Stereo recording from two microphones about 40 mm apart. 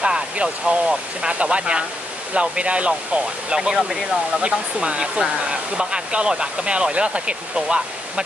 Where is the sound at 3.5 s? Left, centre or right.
Centre.